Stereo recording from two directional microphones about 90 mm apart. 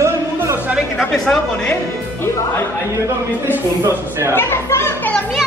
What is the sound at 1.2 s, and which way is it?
Speech, 10° left (ahead or behind).